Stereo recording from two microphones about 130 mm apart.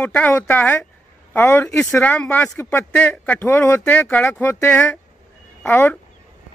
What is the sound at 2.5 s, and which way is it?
Speech, 20° left (ahead or behind).